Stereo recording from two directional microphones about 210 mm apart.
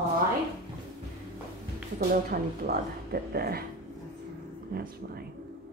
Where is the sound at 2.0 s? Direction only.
45° right (ahead or behind).